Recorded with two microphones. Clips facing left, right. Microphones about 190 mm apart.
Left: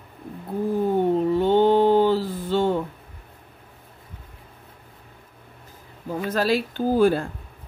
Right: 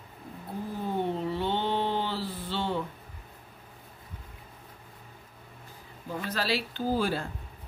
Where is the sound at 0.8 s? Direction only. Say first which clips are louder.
Left 9 dB; 45° left (ahead or behind).